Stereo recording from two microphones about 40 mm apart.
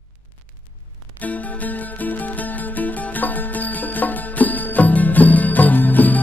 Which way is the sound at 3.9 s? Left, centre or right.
Left.